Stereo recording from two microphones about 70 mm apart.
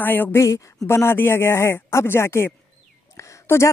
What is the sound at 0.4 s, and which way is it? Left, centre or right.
Speech, left.